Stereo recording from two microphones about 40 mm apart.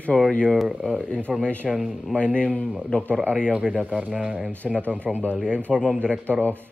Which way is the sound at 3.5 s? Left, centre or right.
Right.